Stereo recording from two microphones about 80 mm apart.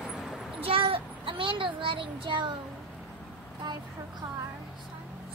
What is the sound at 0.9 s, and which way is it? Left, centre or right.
Child singing, right.